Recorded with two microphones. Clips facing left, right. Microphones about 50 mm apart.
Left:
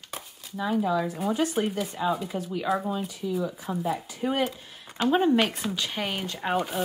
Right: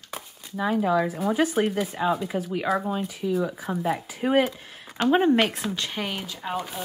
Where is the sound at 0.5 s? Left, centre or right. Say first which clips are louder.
Right 3 dB; right.